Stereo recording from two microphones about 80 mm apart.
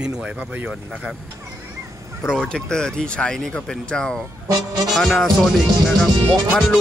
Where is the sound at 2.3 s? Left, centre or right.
Centre.